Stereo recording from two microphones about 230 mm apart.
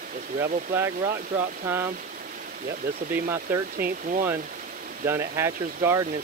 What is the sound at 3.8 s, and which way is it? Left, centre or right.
Speech, centre.